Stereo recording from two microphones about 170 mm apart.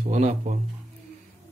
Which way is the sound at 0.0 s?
45° right (ahead or behind).